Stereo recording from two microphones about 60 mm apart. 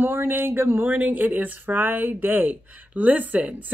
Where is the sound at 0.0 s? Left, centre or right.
Right.